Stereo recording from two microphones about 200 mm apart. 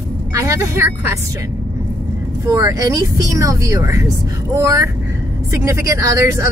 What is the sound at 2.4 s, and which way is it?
Speech, 15° right (ahead or behind).